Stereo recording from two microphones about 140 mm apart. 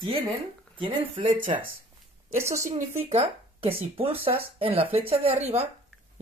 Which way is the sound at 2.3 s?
20° right (ahead or behind).